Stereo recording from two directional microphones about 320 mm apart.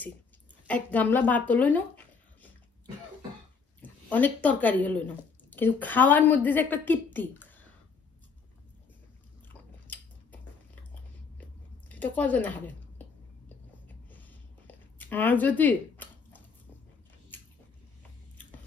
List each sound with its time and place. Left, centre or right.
0.7 s speech: centre
3.8 s a woman's voice: centre
9.5 s chewing: centre
11.9 s a woman's voice: centre
13.8 s a sound: centre